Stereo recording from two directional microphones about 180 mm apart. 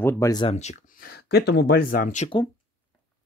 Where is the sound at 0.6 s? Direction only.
40° left (ahead or behind).